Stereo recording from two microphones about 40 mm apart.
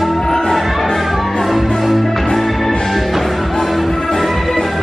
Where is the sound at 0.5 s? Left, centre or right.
Centre.